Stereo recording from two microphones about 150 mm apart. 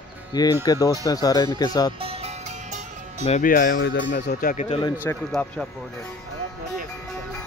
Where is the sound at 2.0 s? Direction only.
40° right (ahead or behind).